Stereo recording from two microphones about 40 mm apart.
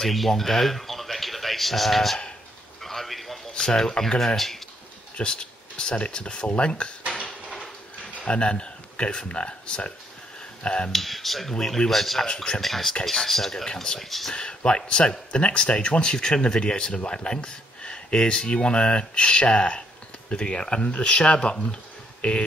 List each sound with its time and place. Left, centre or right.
0.0 s speech: centre
2.8 s a sound: centre
3.5 s speech: centre
5.1 s speech: left
8.1 s speech: left
10.9 s speech: centre
11.5 s speech: centre
11.9 s speech: centre
14.3 s speech: left